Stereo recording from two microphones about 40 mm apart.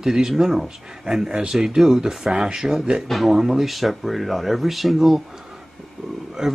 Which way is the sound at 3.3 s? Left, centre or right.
Centre.